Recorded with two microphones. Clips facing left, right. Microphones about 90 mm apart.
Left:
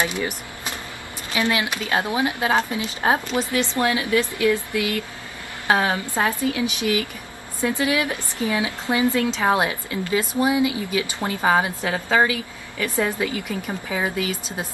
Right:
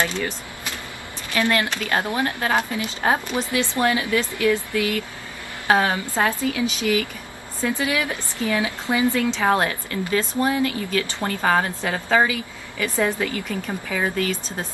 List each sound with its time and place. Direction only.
0.0 s a woman's voice: 15° left (ahead or behind)
1.3 s a woman's voice: 15° left (ahead or behind)